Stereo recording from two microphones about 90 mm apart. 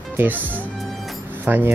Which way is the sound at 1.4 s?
20° right (ahead or behind).